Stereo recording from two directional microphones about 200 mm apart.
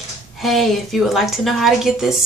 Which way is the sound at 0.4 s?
Centre (ahead or behind).